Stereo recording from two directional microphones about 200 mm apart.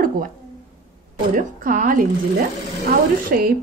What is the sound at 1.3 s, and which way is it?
A woman's voice, 45° right (ahead or behind).